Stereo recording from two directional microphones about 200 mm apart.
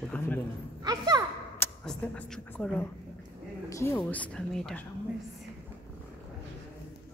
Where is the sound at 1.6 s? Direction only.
5° left (ahead or behind).